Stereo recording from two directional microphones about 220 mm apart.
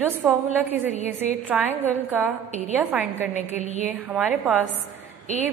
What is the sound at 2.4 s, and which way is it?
Speech, 30° left (ahead or behind).